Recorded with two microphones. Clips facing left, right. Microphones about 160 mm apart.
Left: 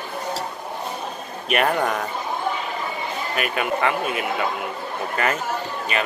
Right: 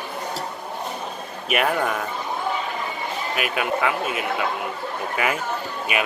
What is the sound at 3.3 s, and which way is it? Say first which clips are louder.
Speech: left 1 dB; centre (ahead or behind).